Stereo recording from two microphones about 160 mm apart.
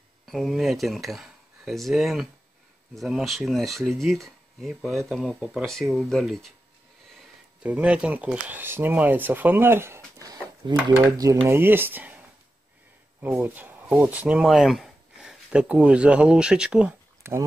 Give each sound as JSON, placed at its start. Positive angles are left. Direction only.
{"t": 0.3, "sound": "speech", "side_deg": 0}
{"t": 10.6, "sound": "speech", "side_deg": -25}
{"t": 17.2, "sound": "a sound", "side_deg": -15}